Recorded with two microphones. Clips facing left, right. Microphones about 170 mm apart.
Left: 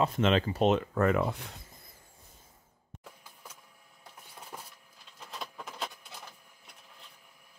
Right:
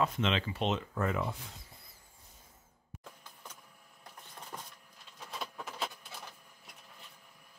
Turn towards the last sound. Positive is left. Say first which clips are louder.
# even
turn(degrees=0)  # may be behind; listen again after turning